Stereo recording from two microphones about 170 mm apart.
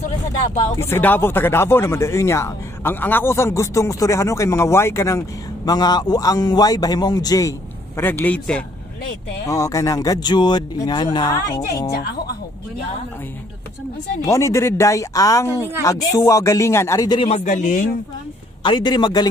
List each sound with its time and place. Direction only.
0.7 s speech: 15° left (ahead or behind)
9.5 s speech: 20° left (ahead or behind)
14.2 s speech: 15° left (ahead or behind)
17.2 s a man's voice: 40° left (ahead or behind)
18.6 s speech: 25° left (ahead or behind)